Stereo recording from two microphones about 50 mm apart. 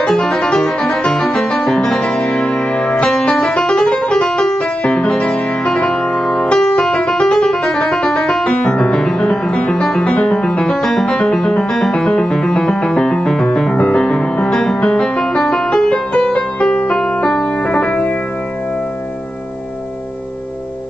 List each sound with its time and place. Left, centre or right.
0.0 s music: centre
16.9 s keyboard: centre